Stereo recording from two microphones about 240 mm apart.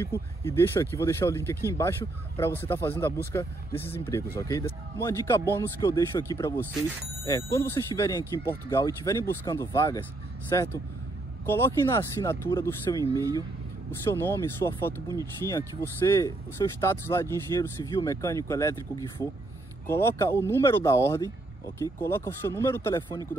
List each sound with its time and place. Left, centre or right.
0.0 s speech: centre
14.1 s speech: centre
19.9 s speech: centre